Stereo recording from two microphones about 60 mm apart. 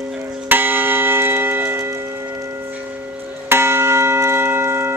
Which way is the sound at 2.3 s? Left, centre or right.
Right.